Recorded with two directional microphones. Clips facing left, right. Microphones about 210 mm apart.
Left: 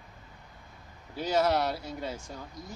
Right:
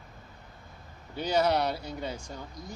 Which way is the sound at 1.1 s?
Centre (ahead or behind).